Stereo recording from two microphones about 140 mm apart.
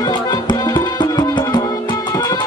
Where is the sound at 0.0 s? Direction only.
30° left (ahead or behind).